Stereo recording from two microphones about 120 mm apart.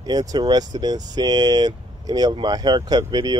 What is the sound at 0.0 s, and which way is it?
Speech, 35° right (ahead or behind).